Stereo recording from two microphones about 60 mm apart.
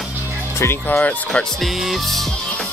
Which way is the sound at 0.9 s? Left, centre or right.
Left.